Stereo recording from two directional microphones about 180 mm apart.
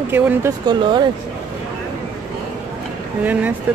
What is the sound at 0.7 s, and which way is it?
Speech, 25° right (ahead or behind).